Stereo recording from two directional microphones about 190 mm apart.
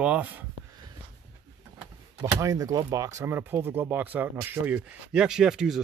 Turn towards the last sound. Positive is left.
turn(degrees=-5)  # may be behind; listen again after turning